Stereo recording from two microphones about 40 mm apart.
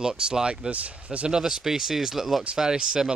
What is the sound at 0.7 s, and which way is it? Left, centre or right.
Speech, right.